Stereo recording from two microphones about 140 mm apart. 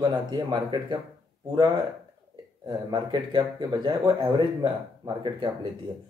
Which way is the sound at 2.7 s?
35° right (ahead or behind).